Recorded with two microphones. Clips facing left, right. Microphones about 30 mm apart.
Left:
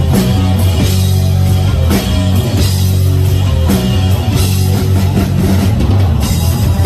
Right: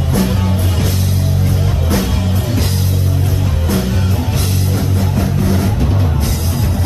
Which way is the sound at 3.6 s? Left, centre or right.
Left.